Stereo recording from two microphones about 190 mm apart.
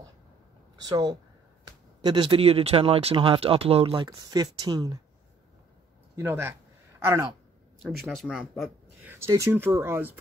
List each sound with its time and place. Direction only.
0.8 s speech: 20° right (ahead or behind)
6.1 s speech: 10° right (ahead or behind)
7.8 s speech: centre (ahead or behind)
9.0 s speech: 15° right (ahead or behind)